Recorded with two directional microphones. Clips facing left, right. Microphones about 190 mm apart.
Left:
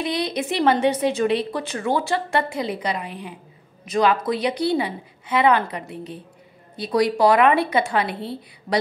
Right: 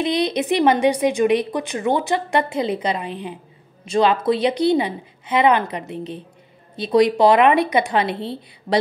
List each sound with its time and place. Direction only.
0.0 s a woman's voice: 20° right (ahead or behind)